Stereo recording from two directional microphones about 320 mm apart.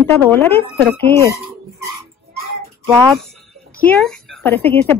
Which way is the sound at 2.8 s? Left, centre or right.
Centre.